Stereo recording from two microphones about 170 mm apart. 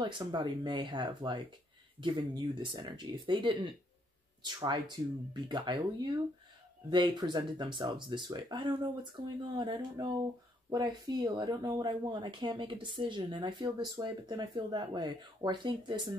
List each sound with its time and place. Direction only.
0.0 s speech: 25° right (ahead or behind)